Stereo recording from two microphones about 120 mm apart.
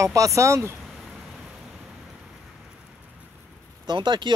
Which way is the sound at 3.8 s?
40° right (ahead or behind).